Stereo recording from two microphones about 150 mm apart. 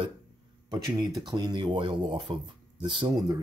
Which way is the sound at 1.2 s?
25° right (ahead or behind).